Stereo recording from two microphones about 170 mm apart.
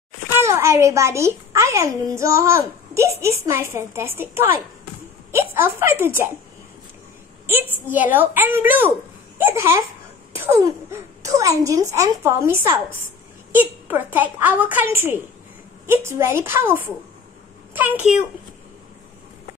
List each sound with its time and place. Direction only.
0.3 s a child's voice: 15° right (ahead or behind)
5.5 s a child's voice: 15° right (ahead or behind)
7.4 s a child's voice: 10° right (ahead or behind)